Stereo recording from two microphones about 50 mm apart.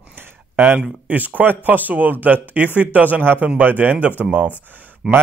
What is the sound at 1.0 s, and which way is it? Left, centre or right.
Speech, right.